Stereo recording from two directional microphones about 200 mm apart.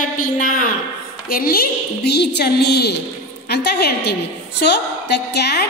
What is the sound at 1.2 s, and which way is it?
A woman's voice, 45° left (ahead or behind).